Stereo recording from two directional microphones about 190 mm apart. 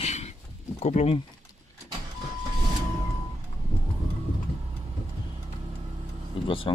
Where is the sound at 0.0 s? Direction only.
35° left (ahead or behind).